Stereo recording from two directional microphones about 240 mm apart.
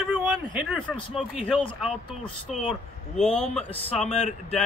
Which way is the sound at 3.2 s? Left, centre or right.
Centre.